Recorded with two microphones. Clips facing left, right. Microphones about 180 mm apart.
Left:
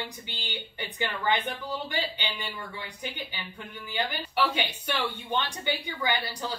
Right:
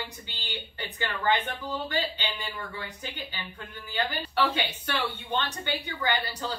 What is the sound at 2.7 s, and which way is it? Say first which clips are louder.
A woman's voice: left 1 dB; 15° left (ahead or behind).